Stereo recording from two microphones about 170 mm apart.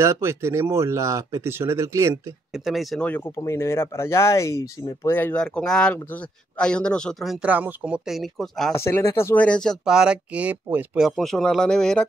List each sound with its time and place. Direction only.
0.0 s speech: 15° right (ahead or behind)
2.5 s speech: centre (ahead or behind)
8.7 s speech: 15° left (ahead or behind); by 11.1 s 10° right (ahead or behind)
11.1 s speech: centre (ahead or behind)